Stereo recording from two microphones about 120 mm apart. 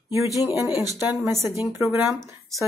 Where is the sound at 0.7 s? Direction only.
30° left (ahead or behind).